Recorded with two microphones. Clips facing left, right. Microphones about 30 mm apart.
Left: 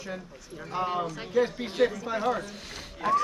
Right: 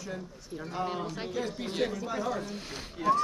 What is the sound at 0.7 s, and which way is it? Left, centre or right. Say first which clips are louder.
A man's voice: left 5 dB; centre.